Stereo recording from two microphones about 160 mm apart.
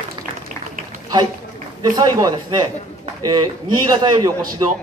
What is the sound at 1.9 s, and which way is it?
A man's voice, 25° right (ahead or behind).